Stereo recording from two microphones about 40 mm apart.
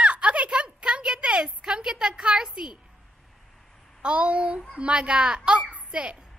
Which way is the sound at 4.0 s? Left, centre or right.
Right.